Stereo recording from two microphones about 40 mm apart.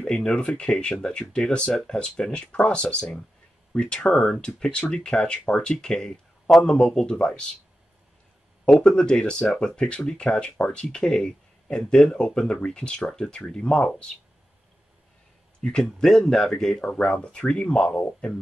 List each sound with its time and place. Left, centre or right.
0.0 s speech: left
8.7 s speech: centre
15.6 s speech: centre
16.8 s speech: left